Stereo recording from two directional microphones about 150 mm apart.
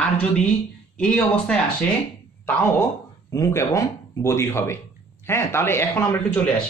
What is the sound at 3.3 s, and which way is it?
Speech, 20° left (ahead or behind).